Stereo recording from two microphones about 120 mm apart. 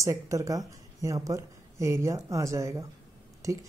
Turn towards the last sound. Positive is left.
turn(degrees=-25)  # may be behind; listen again after turning